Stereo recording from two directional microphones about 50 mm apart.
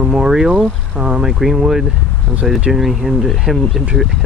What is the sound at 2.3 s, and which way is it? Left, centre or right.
Speech, centre.